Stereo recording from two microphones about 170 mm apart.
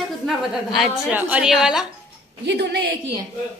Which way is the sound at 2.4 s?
75° right (ahead or behind).